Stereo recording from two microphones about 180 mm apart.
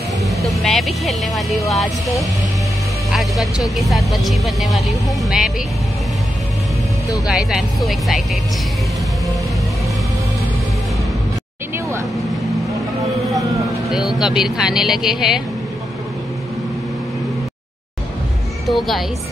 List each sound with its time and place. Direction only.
0.5 s speech: centre (ahead or behind)
7.2 s speech: centre (ahead or behind)
13.9 s speech: centre (ahead or behind)
18.7 s speech: centre (ahead or behind)